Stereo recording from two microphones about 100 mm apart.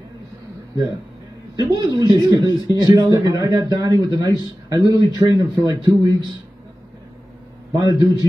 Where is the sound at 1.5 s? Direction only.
45° right (ahead or behind).